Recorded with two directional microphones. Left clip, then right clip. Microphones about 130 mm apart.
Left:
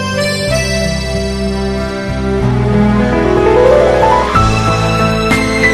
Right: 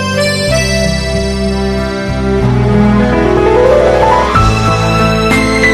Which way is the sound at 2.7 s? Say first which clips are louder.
Right 2 dB; 55° left (ahead or behind).